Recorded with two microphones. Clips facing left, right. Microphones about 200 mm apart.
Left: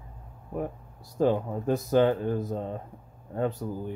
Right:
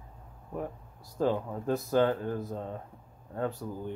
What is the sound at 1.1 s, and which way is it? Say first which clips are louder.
Speech: left 4 dB; 15° left (ahead or behind).